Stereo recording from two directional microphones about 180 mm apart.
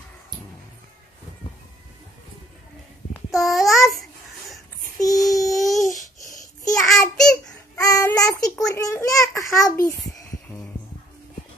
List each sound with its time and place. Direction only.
3.3 s babbling: centre (ahead or behind)
5.0 s child singing: 20° left (ahead or behind)
5.5 s a sound: centre (ahead or behind)
5.8 s babbling: 20° left (ahead or behind)
6.8 s child singing: 5° left (ahead or behind)
7.8 s child singing: 20° left (ahead or behind)
9.8 s a sound: 15° left (ahead or behind)